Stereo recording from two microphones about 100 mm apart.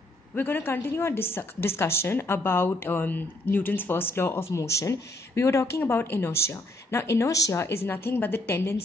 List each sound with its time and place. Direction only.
0.4 s speech: 20° left (ahead or behind)